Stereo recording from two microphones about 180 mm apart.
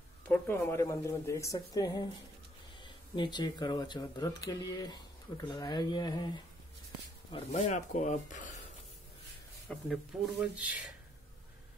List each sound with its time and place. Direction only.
0.3 s speech: 15° left (ahead or behind)
7.5 s speech: 40° left (ahead or behind)
9.7 s speech: centre (ahead or behind)